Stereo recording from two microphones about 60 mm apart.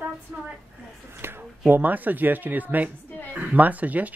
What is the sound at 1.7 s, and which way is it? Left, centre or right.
Speech, right.